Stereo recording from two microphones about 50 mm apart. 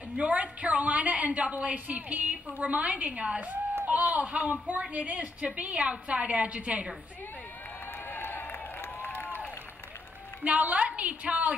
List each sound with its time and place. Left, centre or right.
0.1 s a woman's voice: right
8.1 s a sound: left
10.4 s a woman's voice: right